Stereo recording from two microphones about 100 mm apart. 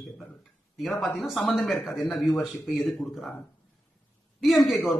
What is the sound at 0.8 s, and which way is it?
Speech, 5° left (ahead or behind).